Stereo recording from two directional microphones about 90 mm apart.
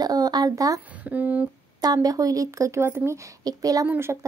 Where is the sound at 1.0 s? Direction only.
20° right (ahead or behind).